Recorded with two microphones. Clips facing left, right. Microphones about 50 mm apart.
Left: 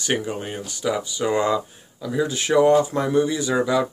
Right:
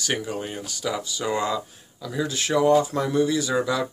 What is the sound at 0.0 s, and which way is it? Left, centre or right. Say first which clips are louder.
Speech: left 3 dB; left.